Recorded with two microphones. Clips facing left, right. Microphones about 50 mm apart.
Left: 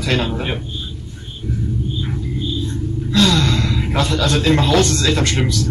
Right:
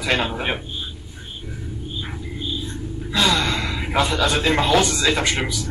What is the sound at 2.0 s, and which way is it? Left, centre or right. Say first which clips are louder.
Music: left 6 dB; centre.